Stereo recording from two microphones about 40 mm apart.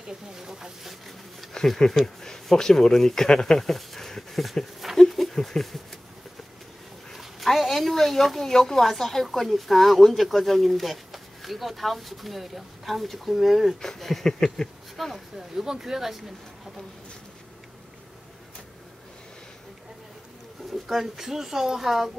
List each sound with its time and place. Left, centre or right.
0.3 s speech: centre
1.6 s speech: centre
4.9 s a sound: centre
7.2 s speech: centre
13.9 s speech: centre
15.5 s speech: centre
20.8 s speech: centre